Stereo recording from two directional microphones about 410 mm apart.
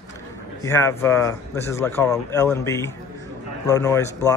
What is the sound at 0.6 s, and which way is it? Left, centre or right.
Speech, centre.